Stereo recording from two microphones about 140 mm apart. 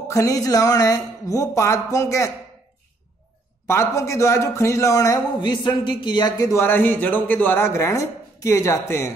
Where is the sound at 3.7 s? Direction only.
20° left (ahead or behind).